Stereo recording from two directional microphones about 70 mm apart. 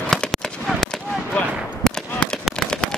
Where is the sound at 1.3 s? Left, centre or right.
Centre.